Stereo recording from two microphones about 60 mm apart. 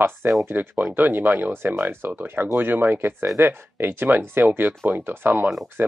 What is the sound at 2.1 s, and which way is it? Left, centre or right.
Speech, right.